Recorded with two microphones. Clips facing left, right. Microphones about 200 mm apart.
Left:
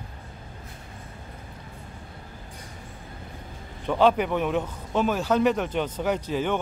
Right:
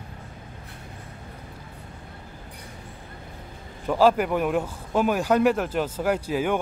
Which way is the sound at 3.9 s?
5° right (ahead or behind).